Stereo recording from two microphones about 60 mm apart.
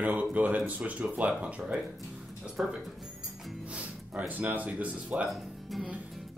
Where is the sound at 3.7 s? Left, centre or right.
Right.